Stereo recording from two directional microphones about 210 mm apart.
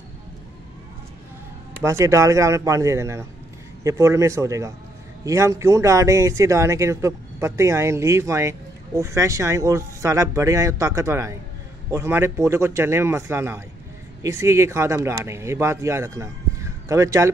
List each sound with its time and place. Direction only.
1.8 s speech: 15° right (ahead or behind)